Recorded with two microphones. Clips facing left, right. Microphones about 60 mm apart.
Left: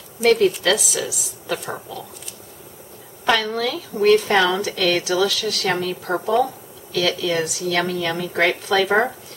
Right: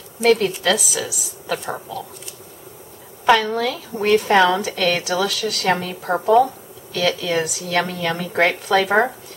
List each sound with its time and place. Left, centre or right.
0.2 s a woman's voice: centre
3.3 s speech: centre
4.6 s speech: centre